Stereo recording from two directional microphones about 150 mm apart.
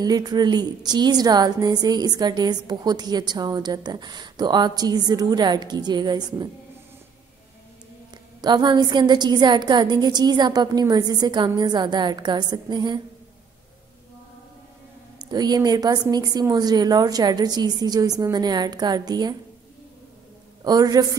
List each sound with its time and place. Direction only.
0.0 s a woman's voice: 25° right (ahead or behind)
8.4 s a woman's voice: 30° right (ahead or behind)
15.1 s a woman's voice: 25° right (ahead or behind)
20.6 s a woman's voice: 25° right (ahead or behind)